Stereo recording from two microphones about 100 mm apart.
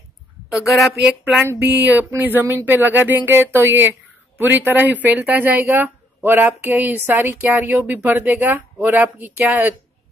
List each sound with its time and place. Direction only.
0.5 s a woman's voice: centre (ahead or behind)
1.0 s speech: 15° right (ahead or behind)